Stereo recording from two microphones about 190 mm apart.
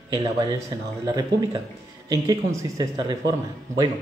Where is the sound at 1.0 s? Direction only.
20° right (ahead or behind).